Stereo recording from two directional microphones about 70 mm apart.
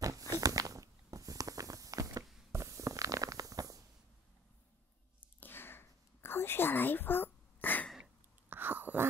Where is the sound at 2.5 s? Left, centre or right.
Right.